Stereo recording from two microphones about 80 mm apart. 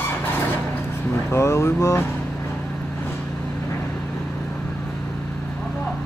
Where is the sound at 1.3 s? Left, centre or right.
Left.